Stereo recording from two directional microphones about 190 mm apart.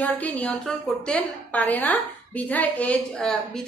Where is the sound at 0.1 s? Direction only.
10° left (ahead or behind).